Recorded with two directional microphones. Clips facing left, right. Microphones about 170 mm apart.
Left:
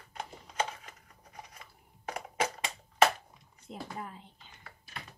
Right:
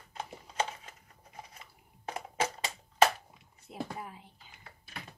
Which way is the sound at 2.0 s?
30° right (ahead or behind).